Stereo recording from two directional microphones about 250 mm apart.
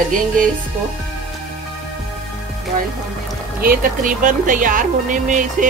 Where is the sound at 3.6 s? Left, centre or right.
Right.